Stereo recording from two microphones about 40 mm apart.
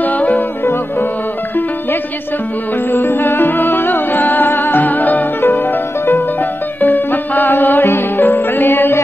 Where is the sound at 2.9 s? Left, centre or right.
Left.